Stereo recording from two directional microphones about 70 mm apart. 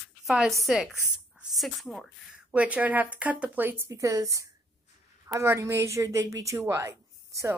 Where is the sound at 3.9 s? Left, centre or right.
Right.